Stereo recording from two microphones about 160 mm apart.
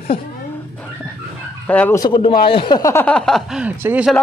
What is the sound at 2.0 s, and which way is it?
A man's voice, 30° left (ahead or behind).